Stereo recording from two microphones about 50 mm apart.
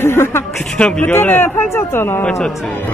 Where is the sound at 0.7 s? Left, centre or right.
Left.